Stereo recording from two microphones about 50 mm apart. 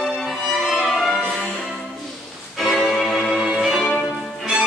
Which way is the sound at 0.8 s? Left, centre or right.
Centre.